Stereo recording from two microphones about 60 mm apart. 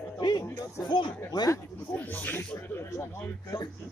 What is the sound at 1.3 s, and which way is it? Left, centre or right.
Speech, left.